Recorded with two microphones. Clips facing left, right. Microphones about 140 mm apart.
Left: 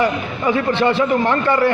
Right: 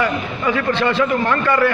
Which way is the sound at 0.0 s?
25° left (ahead or behind).